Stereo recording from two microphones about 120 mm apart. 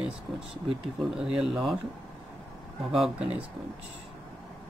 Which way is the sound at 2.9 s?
5° right (ahead or behind).